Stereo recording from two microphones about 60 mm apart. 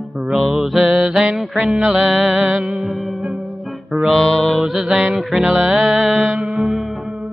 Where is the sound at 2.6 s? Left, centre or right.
Centre.